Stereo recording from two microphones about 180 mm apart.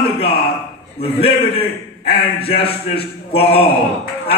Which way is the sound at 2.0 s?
30° left (ahead or behind).